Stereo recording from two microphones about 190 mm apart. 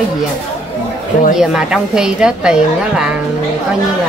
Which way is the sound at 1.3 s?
5° right (ahead or behind).